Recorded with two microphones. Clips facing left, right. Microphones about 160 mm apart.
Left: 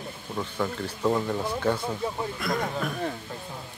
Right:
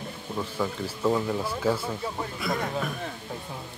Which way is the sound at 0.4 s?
5° right (ahead or behind).